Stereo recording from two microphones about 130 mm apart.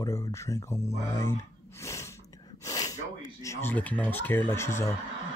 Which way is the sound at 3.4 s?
20° left (ahead or behind).